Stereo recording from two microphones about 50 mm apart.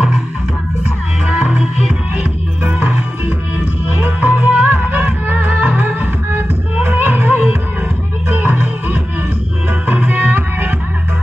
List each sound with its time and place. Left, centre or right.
1.2 s music: right
4.0 s music: right